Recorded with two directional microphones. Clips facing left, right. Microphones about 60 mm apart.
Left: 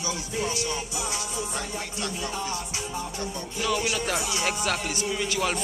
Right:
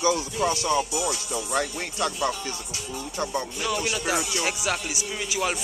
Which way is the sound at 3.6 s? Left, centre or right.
Centre.